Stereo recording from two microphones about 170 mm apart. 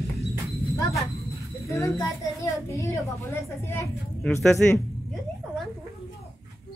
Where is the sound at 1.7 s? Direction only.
15° left (ahead or behind).